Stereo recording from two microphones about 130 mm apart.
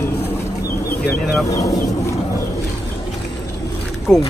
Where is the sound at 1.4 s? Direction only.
25° left (ahead or behind).